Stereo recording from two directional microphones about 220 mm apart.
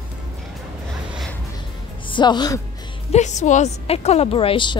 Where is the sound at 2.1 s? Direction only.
20° left (ahead or behind).